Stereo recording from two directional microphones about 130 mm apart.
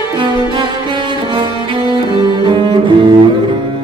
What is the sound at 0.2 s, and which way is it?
Music, 40° right (ahead or behind).